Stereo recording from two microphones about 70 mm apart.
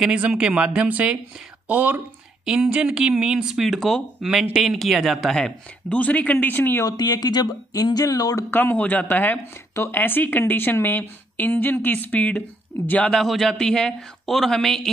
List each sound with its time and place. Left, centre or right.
0.0 s speech: centre
2.4 s speech: centre
5.9 s speech: left
6.9 s speech: left
8.5 s speech: left
13.1 s speech: centre